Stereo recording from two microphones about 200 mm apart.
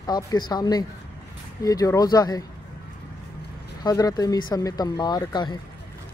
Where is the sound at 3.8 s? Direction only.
20° left (ahead or behind).